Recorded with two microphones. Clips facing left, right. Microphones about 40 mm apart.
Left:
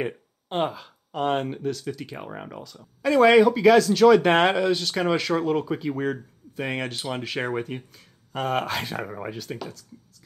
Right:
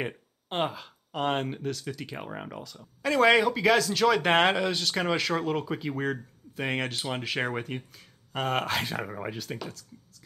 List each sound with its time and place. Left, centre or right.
0.0 s speech: centre